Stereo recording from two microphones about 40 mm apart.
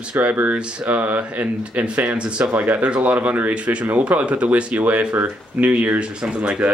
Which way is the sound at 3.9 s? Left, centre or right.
Right.